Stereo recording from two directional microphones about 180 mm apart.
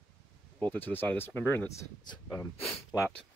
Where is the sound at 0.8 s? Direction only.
10° left (ahead or behind).